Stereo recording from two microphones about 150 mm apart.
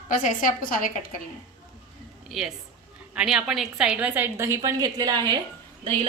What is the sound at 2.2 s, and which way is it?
A woman's voice, centre (ahead or behind).